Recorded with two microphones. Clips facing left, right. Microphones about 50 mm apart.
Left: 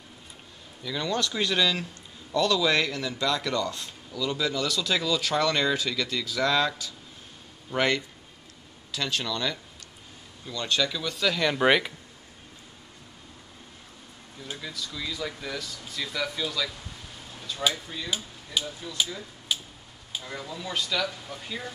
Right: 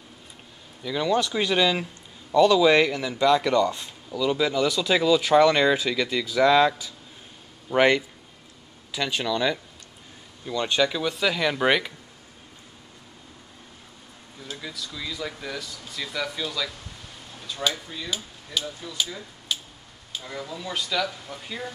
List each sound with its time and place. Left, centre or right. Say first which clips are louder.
0.8 s speech: right 5 dB; centre
14.6 s speech: even; centre
17.4 s a sound: right 1 dB; centre
17.6 s speech: even; centre
19.5 s tick-tock: even; centre
20.2 s speech: right 3 dB; centre